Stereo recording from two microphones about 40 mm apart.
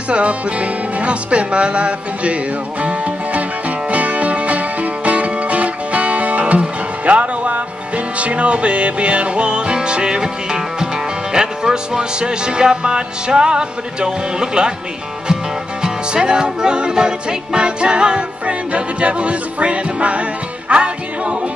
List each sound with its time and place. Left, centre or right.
0.1 s music: right
15.8 s music: right